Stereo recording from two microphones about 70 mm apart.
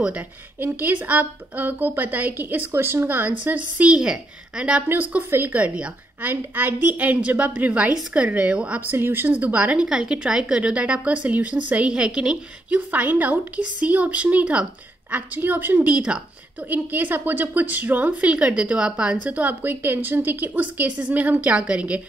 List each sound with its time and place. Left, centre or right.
0.6 s a woman's voice: right
4.8 s a woman's voice: right